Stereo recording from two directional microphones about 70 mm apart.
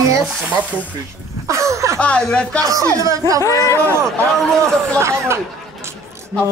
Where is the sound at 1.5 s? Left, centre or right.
Right.